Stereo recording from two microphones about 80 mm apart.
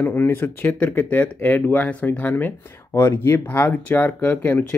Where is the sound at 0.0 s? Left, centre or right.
Left.